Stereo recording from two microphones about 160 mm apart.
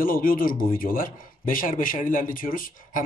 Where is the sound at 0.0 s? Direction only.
60° left (ahead or behind).